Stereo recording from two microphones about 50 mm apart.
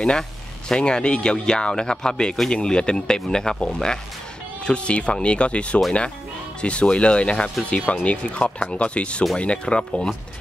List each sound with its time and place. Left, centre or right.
0.7 s speech: centre